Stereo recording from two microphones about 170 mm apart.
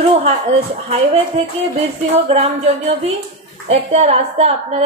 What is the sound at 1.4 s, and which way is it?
A woman's voice, 40° right (ahead or behind).